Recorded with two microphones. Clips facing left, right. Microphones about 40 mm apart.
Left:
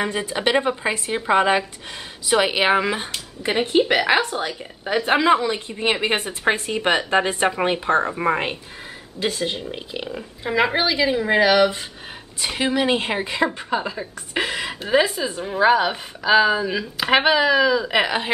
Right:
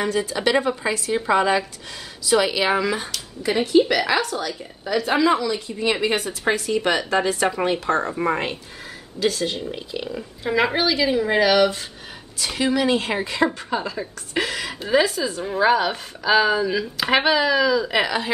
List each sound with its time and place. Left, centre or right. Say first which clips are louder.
0.0 s a woman's voice: right 1 dB; left
15.4 s a woman's voice: left 2 dB; centre